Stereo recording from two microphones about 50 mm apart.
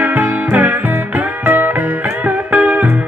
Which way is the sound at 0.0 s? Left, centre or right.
Right.